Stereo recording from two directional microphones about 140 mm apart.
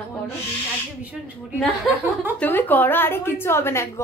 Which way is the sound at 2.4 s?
15° left (ahead or behind).